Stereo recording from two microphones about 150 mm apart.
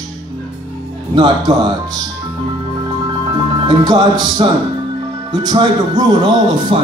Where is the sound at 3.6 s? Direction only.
30° right (ahead or behind).